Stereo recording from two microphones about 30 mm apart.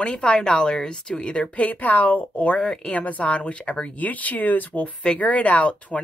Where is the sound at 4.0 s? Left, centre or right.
Left.